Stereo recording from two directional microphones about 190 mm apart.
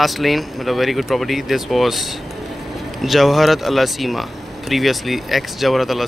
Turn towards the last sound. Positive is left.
turn(degrees=0)  # may be behind; listen again after turning